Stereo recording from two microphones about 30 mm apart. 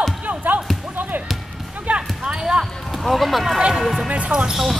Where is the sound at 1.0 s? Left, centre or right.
Right.